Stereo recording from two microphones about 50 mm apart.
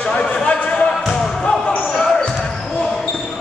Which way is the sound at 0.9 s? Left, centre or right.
Centre.